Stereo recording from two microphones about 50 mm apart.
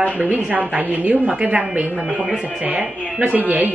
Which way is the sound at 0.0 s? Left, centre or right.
Right.